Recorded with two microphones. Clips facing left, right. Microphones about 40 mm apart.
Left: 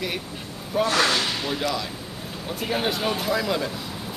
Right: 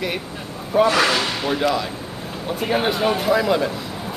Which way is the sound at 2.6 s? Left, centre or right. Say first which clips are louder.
Right 5 dB; centre.